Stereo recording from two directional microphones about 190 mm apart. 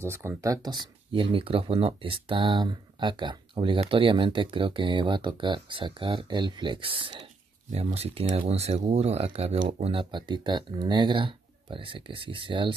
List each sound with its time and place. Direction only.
0.0 s speech: 15° right (ahead or behind)